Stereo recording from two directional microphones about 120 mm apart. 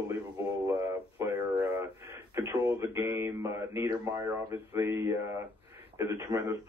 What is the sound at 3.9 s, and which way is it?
Speech, 35° right (ahead or behind).